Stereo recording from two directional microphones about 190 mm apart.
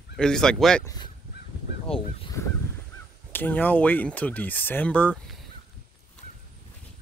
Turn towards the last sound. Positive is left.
turn(degrees=5)  # may be behind; listen again after turning